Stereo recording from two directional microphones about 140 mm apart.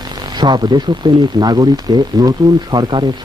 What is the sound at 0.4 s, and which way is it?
Speech, 30° right (ahead or behind).